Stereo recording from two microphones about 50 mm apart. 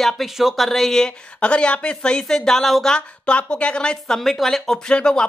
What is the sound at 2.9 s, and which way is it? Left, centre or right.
Speech, left.